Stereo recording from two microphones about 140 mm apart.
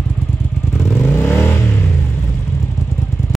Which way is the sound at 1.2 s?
15° left (ahead or behind).